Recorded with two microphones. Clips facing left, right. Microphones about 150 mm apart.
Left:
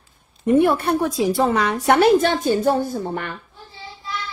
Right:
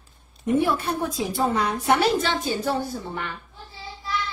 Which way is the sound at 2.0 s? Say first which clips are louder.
Left 7 dB; 50° left (ahead or behind).